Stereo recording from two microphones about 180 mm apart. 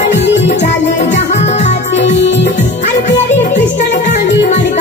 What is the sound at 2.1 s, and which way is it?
Music, 80° left.